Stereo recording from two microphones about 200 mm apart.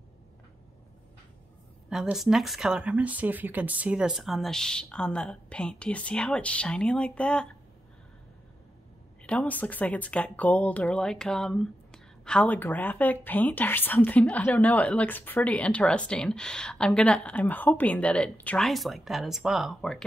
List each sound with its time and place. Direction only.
1.9 s speech: centre (ahead or behind)
9.2 s speech: 5° left (ahead or behind)